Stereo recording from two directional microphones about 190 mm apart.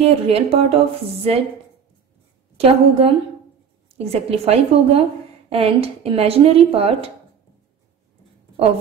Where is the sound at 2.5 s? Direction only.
30° right (ahead or behind).